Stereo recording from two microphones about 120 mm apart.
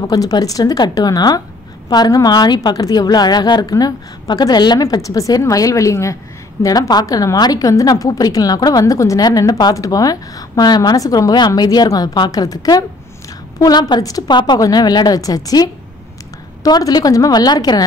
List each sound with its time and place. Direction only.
0.0 s a woman's voice: 30° left (ahead or behind)